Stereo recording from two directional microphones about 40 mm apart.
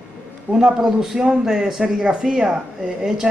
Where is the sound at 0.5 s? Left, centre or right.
Centre.